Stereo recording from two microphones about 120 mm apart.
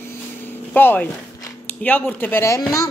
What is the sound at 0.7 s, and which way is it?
A woman's voice, 15° left (ahead or behind).